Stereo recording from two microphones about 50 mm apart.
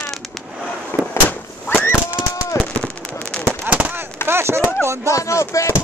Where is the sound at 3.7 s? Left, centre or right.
Right.